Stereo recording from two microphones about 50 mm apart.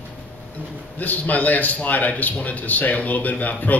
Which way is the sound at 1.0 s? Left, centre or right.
Left.